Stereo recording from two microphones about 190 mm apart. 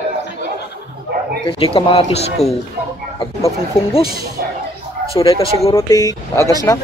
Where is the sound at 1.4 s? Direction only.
30° left (ahead or behind).